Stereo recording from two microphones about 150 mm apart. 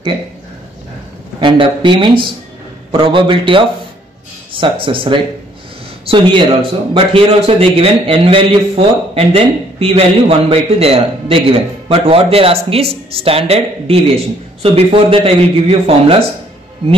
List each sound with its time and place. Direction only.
1.4 s speech: 35° right (ahead or behind)